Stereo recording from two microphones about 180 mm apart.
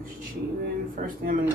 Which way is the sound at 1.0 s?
45° right (ahead or behind).